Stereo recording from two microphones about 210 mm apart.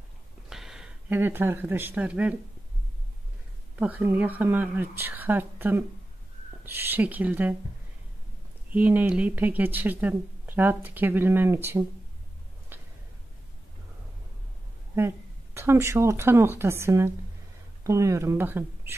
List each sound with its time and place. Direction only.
0.5 s speech: centre (ahead or behind)
3.7 s speech: 5° right (ahead or behind)
8.7 s speech: 10° right (ahead or behind)
15.0 s speech: 10° right (ahead or behind)